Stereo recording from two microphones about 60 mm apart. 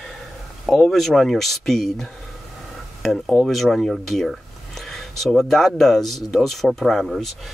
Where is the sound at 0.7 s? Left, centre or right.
Centre.